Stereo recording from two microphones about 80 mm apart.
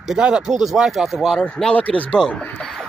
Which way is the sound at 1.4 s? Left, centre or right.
Centre.